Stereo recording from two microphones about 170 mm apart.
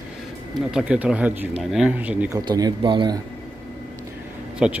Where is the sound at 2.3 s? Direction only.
20° right (ahead or behind).